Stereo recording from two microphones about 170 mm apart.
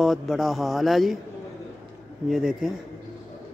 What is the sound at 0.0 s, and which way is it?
Speech, centre (ahead or behind).